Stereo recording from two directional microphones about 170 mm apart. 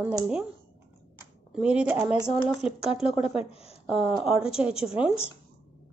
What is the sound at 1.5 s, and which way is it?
Speech, 5° right (ahead or behind).